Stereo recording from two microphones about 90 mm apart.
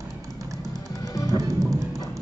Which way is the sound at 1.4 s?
40° right (ahead or behind).